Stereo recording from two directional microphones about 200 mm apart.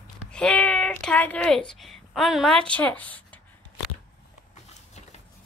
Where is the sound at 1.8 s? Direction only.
Centre (ahead or behind).